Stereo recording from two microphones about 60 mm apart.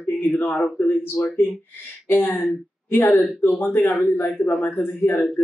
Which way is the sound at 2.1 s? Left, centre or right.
Left.